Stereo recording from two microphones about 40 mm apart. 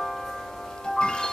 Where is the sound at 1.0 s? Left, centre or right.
Centre.